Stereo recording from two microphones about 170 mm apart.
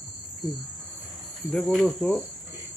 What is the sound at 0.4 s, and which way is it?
Speech, 25° left (ahead or behind).